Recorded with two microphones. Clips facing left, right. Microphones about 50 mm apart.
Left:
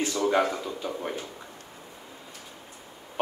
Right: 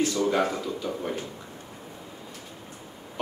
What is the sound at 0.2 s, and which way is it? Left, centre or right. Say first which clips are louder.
Speech: even; centre.